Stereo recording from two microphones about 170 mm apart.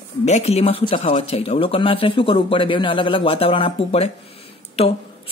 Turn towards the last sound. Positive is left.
turn(degrees=35)  # may be behind; listen again after turning